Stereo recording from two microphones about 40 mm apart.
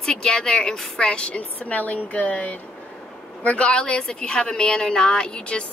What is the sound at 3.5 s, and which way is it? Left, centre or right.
A woman's voice, left.